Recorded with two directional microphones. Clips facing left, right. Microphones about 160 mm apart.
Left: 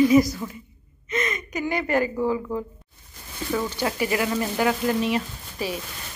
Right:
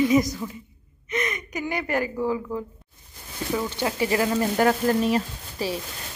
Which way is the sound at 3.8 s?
30° right (ahead or behind).